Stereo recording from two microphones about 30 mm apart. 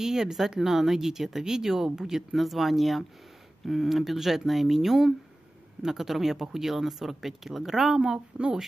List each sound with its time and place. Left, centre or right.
0.0 s speech: centre
2.3 s speech: centre
8.3 s speech: right